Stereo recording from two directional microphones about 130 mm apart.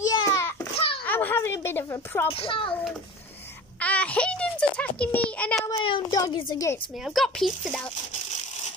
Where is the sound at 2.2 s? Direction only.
45° left (ahead or behind).